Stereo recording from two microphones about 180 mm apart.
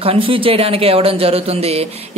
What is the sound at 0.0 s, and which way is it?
Speech, 30° right (ahead or behind).